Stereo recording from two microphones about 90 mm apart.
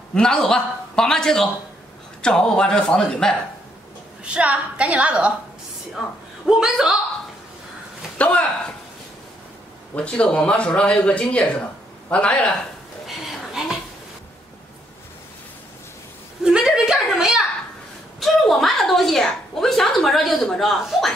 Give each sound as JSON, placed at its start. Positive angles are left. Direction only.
{"t": 0.1, "sound": "speech", "side_deg": 5}
{"t": 4.2, "sound": "a woman's voice", "side_deg": -15}
{"t": 6.5, "sound": "a woman's voice", "side_deg": -5}
{"t": 8.2, "sound": "speech", "side_deg": 15}
{"t": 9.9, "sound": "speech", "side_deg": 10}
{"t": 13.0, "sound": "a sound", "side_deg": -5}
{"t": 16.4, "sound": "a sound", "side_deg": -5}
{"t": 18.2, "sound": "a woman's voice", "side_deg": 5}